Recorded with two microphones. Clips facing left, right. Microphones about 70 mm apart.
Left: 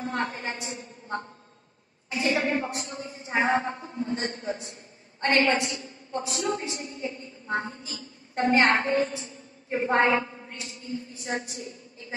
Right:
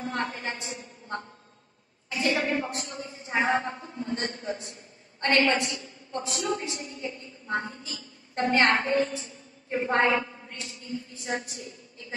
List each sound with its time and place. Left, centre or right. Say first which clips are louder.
0.0 s a woman's voice: left 1 dB; left
2.1 s a woman's voice: left 1 dB; left
3.8 s speech: left 2 dB; centre
4.2 s a woman's voice: left 1 dB; left
9.1 s a woman's voice: even; left
10.7 s a woman's voice: left 2 dB; left